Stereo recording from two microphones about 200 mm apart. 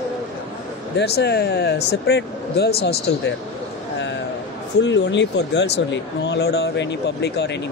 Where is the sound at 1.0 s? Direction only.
55° left (ahead or behind).